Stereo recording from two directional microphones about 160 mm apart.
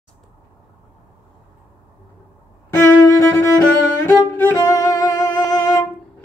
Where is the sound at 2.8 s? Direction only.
20° left (ahead or behind).